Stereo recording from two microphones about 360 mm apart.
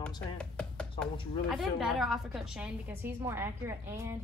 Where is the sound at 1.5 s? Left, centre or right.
Centre.